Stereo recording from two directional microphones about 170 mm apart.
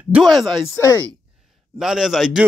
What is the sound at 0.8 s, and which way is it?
Speech, 15° left (ahead or behind).